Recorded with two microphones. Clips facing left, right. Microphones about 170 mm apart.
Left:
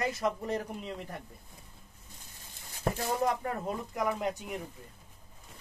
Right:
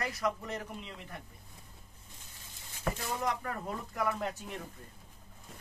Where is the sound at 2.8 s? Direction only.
30° left (ahead or behind).